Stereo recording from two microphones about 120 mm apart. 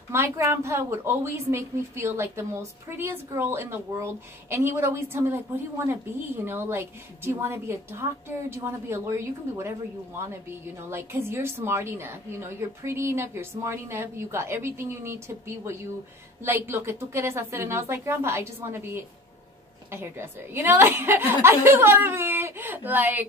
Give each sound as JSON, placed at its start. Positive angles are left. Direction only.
{"t": 0.1, "sound": "a woman's voice", "side_deg": -20}